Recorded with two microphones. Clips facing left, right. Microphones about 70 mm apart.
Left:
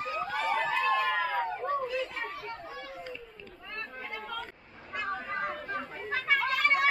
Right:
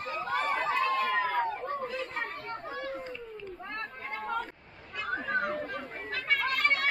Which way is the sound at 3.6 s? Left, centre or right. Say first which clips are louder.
Left 1 dB; right.